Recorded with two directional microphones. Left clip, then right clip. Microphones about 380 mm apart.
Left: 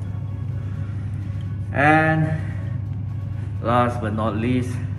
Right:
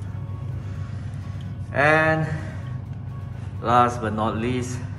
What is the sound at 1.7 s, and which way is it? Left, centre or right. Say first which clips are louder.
Speech: left 1 dB; centre.